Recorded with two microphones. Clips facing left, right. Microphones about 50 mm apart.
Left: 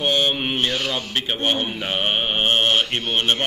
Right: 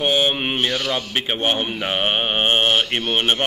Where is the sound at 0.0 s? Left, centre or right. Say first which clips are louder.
Right 2 dB; centre.